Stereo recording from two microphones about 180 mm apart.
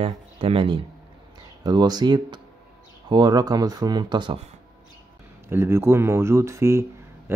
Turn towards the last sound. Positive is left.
turn(degrees=-15)  # may be behind; listen again after turning